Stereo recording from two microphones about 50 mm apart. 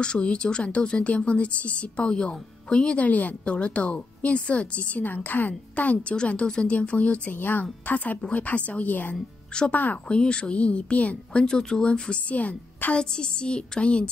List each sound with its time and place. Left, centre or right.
0.0 s speech: centre
7.3 s speech: left
9.1 s a woman's voice: centre
9.7 s speech: left
10.0 s speech: centre
11.4 s speech: centre; by 12.9 s left
12.9 s speech: centre